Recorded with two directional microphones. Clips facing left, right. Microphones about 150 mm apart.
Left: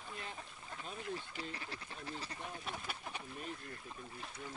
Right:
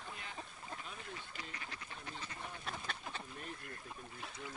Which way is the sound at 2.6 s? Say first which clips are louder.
Even; 10° left (ahead or behind).